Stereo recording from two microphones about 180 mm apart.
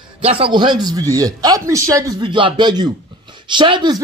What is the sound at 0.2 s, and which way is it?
Speech, 30° right (ahead or behind).